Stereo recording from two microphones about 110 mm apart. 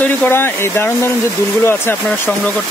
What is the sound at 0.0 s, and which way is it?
Speech, 20° left (ahead or behind).